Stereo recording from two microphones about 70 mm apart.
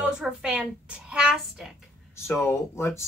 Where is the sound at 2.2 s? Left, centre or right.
Left.